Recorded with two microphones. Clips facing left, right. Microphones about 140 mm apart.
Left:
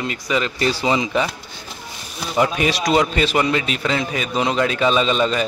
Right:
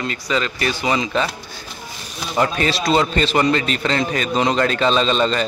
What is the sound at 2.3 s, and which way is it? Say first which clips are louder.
Speech: left 1 dB; 10° left (ahead or behind).